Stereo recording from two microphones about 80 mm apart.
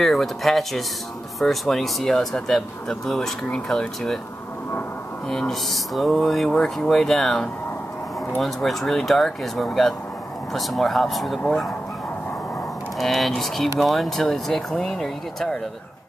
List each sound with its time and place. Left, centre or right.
0.0 s speech: centre
5.3 s speech: centre
13.0 s speech: centre